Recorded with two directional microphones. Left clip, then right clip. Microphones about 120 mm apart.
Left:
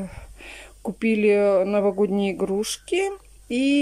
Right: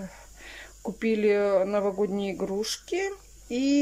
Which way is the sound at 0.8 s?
20° left (ahead or behind).